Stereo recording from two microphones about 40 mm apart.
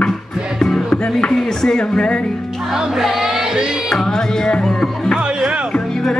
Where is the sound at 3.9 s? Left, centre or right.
Centre.